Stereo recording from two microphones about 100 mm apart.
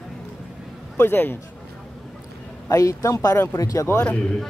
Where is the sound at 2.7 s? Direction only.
35° left (ahead or behind).